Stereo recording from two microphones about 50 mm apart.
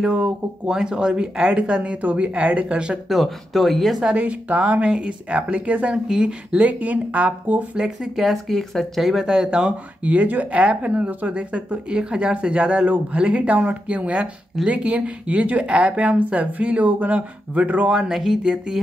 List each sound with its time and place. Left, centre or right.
0.0 s speech: centre
3.1 s speech: centre
4.2 s speech: right
6.0 s speech: centre
6.6 s speech: right
7.7 s speech: centre
8.2 s speech: centre; by 17.9 s right
17.9 s speech: centre